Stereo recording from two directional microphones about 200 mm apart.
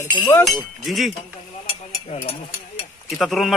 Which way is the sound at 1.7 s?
30° left (ahead or behind).